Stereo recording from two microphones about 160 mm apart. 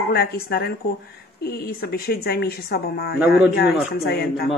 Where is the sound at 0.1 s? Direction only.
75° left (ahead or behind).